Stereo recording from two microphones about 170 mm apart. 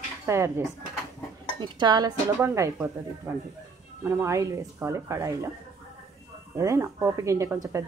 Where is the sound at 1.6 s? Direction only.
25° right (ahead or behind).